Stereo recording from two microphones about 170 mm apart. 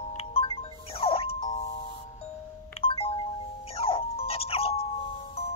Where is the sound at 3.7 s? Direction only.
35° left (ahead or behind).